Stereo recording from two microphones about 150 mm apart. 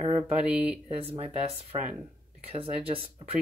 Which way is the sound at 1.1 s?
40° right (ahead or behind).